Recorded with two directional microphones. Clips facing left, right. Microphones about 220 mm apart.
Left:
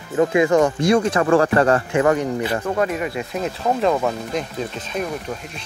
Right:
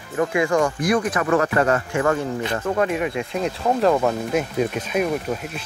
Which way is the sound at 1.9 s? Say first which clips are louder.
Left 3 dB; 20° left (ahead or behind).